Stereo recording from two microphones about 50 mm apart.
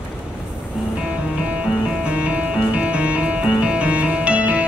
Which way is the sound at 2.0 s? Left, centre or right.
Right.